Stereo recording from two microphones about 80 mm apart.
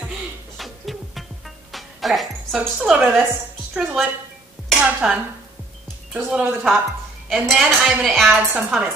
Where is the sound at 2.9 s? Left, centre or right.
Centre.